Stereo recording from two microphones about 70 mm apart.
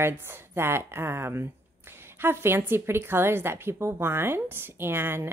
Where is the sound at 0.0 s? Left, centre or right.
Right.